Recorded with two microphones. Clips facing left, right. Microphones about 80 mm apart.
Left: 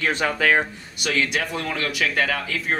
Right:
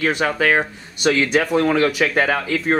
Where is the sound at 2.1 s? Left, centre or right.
Right.